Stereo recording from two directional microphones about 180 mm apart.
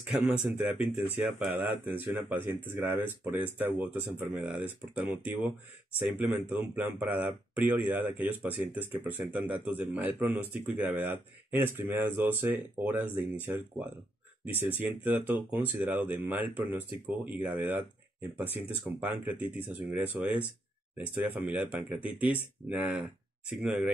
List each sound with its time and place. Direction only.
0.1 s speech: 5° right (ahead or behind)